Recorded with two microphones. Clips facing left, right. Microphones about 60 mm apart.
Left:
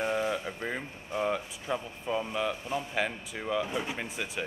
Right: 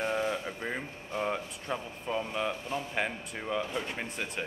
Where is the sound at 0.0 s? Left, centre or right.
Centre.